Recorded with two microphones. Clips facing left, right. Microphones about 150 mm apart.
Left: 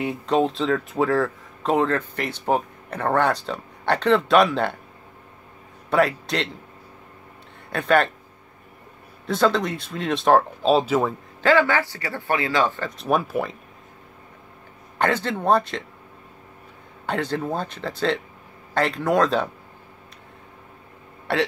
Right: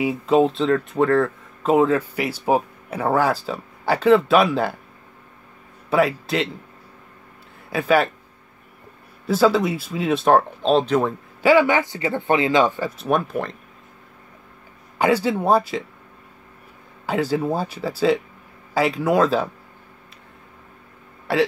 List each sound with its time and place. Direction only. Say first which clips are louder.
0.0 s speech: right 4 dB; centre (ahead or behind)
5.9 s speech: right 1 dB; centre (ahead or behind)
7.7 s speech: right 1 dB; 5° right (ahead or behind)
9.2 s speech: right 3 dB; 5° right (ahead or behind)
11.4 s speech: right 3 dB; 15° right (ahead or behind)
12.9 s speech: right 1 dB; centre (ahead or behind)
15.0 s speech: right 4 dB; 10° right (ahead or behind)
17.0 s speech: right 4 dB; 5° right (ahead or behind)
21.3 s speech: right 3 dB; centre (ahead or behind)